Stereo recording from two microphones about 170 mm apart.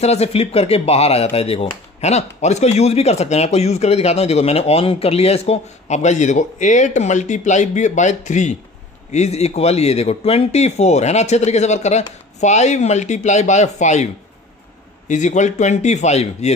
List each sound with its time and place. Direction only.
0.0 s speech: 40° left (ahead or behind)
15.0 s speech: 45° left (ahead or behind)